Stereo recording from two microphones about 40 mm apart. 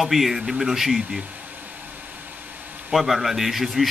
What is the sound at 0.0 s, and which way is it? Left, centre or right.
Speech, centre.